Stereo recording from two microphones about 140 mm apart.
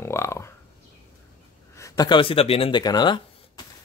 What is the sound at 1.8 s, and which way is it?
A man's voice, 25° left (ahead or behind).